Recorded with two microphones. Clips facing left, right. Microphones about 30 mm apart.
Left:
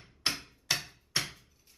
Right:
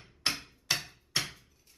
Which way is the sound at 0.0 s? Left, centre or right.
Centre.